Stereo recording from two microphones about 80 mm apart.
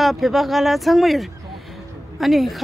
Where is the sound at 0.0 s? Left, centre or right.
Centre.